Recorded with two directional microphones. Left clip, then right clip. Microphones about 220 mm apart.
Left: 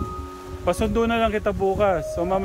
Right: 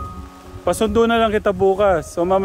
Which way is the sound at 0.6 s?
25° right (ahead or behind).